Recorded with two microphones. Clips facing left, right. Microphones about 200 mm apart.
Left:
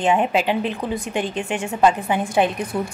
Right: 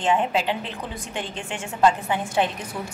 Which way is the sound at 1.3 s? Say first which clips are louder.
Left 8 dB; 60° left (ahead or behind).